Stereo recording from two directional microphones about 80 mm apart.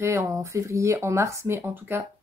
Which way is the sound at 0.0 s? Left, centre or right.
Right.